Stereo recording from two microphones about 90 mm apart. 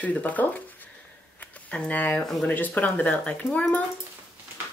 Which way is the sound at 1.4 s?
15° left (ahead or behind).